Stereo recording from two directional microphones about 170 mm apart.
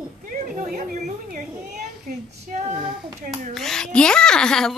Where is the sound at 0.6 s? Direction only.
50° right (ahead or behind).